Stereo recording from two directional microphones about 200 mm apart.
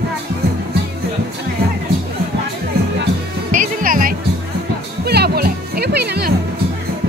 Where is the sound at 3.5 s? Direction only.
40° right (ahead or behind).